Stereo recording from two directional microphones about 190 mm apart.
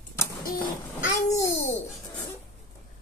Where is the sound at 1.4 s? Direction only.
15° left (ahead or behind).